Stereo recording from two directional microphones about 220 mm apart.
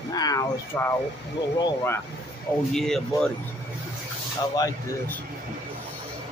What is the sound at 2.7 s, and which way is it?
Speech, centre (ahead or behind).